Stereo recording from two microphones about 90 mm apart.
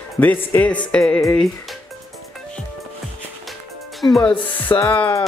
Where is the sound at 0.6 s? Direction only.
15° left (ahead or behind).